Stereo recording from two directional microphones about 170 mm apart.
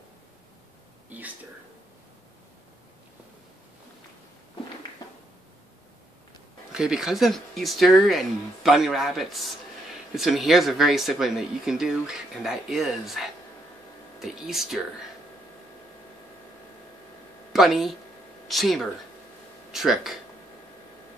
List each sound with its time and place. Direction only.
6.7 s speech: 5° right (ahead or behind)
17.5 s speech: centre (ahead or behind)